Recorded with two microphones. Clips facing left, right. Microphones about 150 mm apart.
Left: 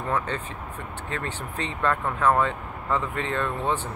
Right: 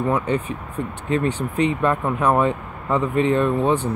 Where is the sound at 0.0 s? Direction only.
15° right (ahead or behind).